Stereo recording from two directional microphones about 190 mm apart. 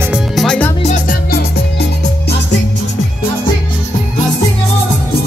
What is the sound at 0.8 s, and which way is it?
Music, 40° left (ahead or behind).